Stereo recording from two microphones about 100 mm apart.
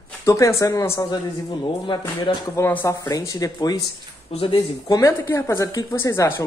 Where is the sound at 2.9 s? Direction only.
35° left (ahead or behind).